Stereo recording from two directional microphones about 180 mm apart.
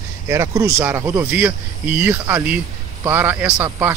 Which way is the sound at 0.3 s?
15° right (ahead or behind).